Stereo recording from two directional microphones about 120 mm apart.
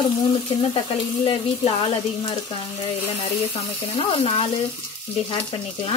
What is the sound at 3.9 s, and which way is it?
Frying, 55° left (ahead or behind).